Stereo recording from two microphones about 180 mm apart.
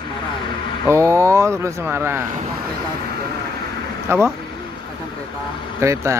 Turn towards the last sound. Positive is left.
turn(degrees=-15)  # may be behind; listen again after turning